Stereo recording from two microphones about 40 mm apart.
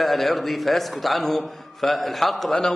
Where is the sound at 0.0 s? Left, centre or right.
Centre.